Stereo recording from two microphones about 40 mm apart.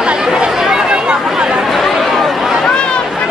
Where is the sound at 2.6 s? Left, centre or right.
Left.